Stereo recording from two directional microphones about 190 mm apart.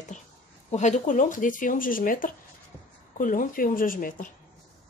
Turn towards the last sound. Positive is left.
turn(degrees=45)  # may be behind; listen again after turning